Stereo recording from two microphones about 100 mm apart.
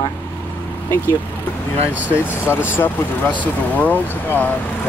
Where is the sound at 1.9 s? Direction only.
15° right (ahead or behind).